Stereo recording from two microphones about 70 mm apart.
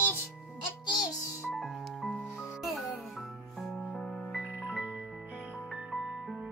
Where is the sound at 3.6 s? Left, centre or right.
Centre.